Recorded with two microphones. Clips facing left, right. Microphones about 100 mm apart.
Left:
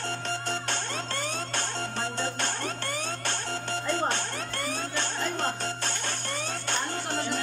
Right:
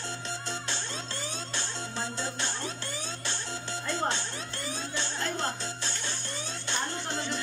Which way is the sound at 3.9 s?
55° left (ahead or behind).